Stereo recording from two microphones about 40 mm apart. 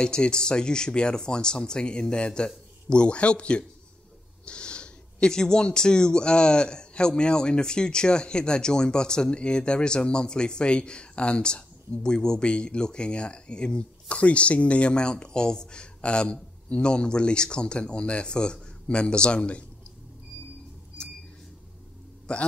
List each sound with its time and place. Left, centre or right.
0.0 s speech: left
22.3 s speech: left